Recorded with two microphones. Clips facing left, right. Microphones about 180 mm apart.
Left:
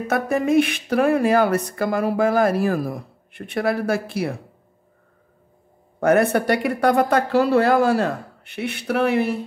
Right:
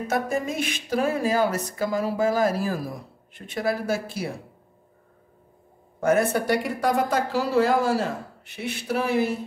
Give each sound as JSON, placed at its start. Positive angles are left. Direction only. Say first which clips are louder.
{"t": 0.1, "sound": "speech", "louder": "left 8 dB", "side_deg": 60}
{"t": 5.9, "sound": "speech", "louder": "left 4 dB", "side_deg": 65}